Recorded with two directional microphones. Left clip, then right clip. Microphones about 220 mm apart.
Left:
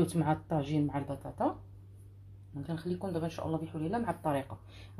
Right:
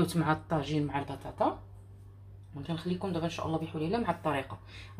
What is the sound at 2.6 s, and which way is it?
A woman's voice, 35° left (ahead or behind).